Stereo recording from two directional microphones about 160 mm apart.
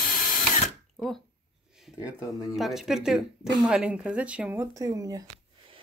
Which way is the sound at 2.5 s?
Centre (ahead or behind).